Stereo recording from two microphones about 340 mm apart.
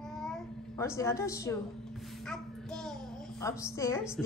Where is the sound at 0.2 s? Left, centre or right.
Centre.